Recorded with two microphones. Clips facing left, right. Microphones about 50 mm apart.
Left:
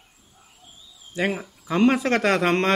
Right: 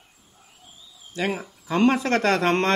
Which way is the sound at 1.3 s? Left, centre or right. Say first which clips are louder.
Even; centre.